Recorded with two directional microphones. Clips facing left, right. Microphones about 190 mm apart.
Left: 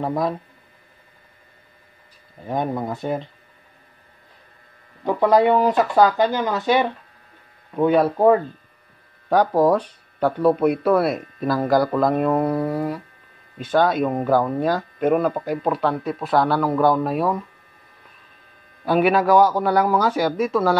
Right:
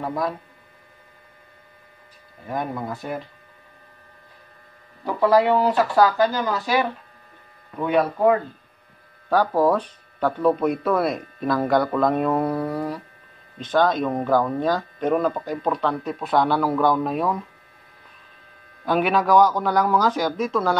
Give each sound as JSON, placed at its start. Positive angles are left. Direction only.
{"t": 2.4, "sound": "speech", "side_deg": 25}
{"t": 5.0, "sound": "speech", "side_deg": 20}
{"t": 9.3, "sound": "speech", "side_deg": 15}
{"t": 18.9, "sound": "speech", "side_deg": 5}